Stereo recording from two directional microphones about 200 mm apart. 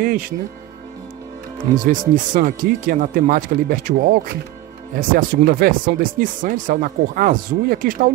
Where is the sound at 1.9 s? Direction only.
40° right (ahead or behind).